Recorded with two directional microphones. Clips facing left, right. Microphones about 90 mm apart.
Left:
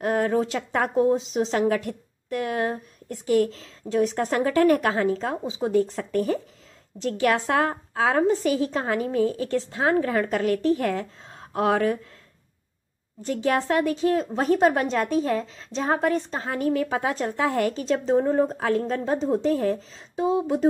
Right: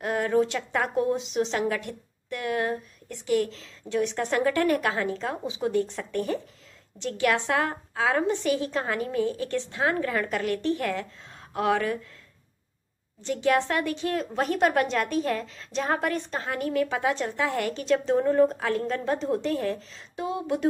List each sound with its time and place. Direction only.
0.0 s a woman's voice: 35° left (ahead or behind)
8.5 s a woman's voice: 40° right (ahead or behind)
8.7 s a woman's voice: 35° left (ahead or behind)
13.2 s a woman's voice: 35° left (ahead or behind)